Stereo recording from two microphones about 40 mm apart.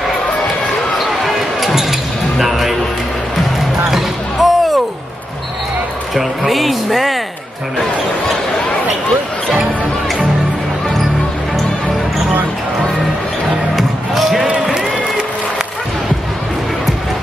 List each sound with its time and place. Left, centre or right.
0.9 s basketball bounce: centre
3.9 s a sound: centre
6.1 s music: centre
13.7 s music: centre
14.5 s music: right